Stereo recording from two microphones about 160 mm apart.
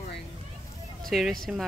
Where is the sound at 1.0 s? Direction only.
Centre (ahead or behind).